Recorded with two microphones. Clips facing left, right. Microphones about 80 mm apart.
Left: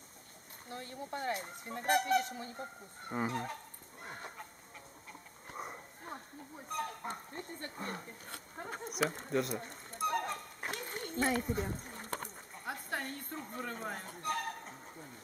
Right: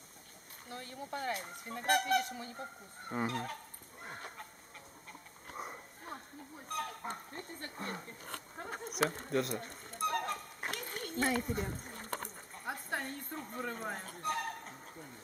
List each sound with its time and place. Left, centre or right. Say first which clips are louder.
0.7 s speech: left 1 dB; centre
2.6 s speech: even; centre
4.0 s fowl: even; centre
5.5 s horse: even; centre
6.7 s speech: left 1 dB; centre
9.2 s a sound: even; centre
10.7 s a sound: left 1 dB; centre
11.1 s speech: left 1 dB; centre
12.1 s a sound: even; centre
13.7 s speech: even; centre
14.0 s fowl: even; centre